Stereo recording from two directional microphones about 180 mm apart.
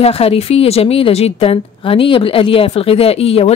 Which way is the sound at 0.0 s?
35° left (ahead or behind).